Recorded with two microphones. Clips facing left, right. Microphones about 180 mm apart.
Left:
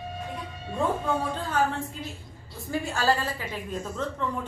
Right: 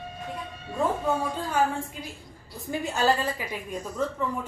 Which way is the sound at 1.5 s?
10° right (ahead or behind).